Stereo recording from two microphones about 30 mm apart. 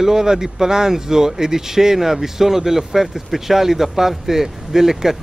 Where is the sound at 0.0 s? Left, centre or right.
Centre.